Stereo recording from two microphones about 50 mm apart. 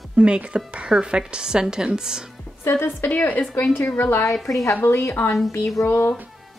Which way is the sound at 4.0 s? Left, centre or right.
Left.